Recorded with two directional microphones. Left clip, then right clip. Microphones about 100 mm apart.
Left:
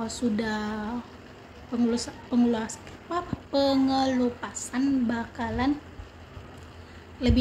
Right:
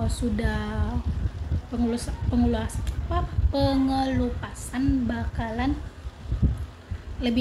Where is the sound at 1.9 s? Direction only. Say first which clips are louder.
Left 1 dB; 30° left (ahead or behind).